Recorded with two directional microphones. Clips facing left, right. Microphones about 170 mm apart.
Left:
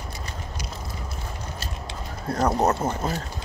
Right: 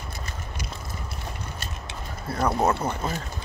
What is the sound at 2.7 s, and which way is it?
Speech, 45° left (ahead or behind).